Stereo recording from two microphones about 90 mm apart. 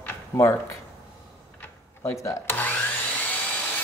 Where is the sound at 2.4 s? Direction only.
20° left (ahead or behind).